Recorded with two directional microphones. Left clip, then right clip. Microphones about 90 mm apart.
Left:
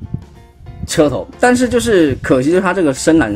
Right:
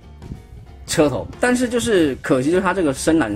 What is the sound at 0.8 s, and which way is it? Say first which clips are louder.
Speech: left 4 dB; 25° left (ahead or behind).